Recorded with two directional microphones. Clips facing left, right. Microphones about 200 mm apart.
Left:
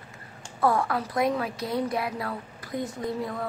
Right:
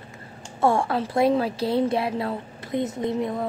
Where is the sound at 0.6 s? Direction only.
25° right (ahead or behind).